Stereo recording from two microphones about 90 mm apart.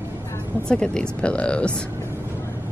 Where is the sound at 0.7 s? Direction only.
10° left (ahead or behind).